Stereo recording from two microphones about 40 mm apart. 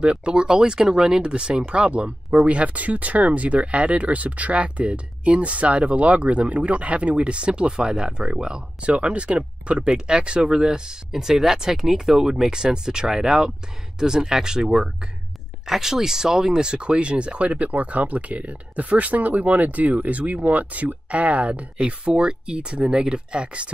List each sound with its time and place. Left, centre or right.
0.0 s speech: right
8.8 s speech: right; by 14.6 s centre
15.6 s speech: centre; by 23.7 s right